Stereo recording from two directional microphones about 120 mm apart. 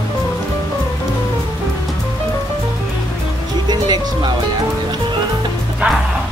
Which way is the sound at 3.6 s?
35° right (ahead or behind).